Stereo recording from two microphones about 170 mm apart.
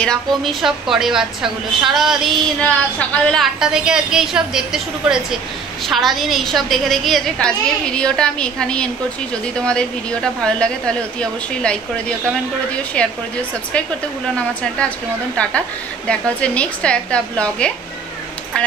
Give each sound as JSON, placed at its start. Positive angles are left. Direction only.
{"t": 0.0, "sound": "a woman's voice", "side_deg": 0}